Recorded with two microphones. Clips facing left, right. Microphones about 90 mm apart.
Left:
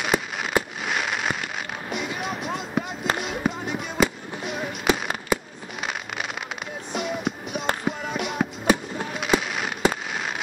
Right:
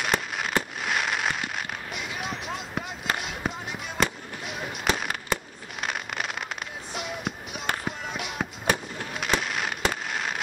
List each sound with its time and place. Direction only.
0.0 s fireworks: 5° left (ahead or behind)
2.5 s a sound: centre (ahead or behind)
3.2 s fireworks: centre (ahead or behind)
6.9 s music: centre (ahead or behind)
9.2 s fireworks: centre (ahead or behind)